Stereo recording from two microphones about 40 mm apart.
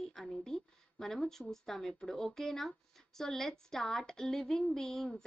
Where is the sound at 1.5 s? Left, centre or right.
Centre.